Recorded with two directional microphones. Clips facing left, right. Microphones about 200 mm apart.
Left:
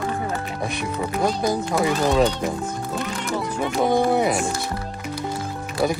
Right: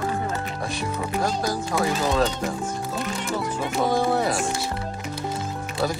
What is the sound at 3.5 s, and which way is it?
Speech, 20° left (ahead or behind).